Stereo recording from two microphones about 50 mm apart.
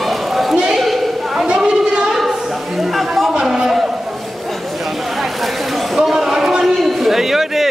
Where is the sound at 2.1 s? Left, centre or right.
Centre.